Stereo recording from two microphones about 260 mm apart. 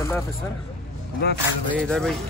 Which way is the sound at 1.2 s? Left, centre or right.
Left.